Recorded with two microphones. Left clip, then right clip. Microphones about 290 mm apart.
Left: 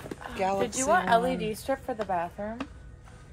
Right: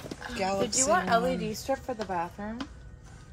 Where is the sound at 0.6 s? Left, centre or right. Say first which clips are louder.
Even; left.